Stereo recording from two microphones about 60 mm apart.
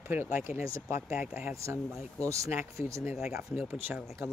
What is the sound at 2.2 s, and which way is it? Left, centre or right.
Speech, right.